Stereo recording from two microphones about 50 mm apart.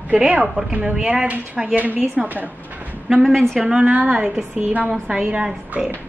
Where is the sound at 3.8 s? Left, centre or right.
Right.